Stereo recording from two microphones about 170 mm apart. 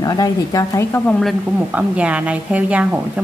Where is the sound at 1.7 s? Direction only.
10° right (ahead or behind).